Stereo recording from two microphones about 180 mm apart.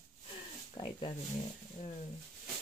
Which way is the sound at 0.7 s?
25° left (ahead or behind).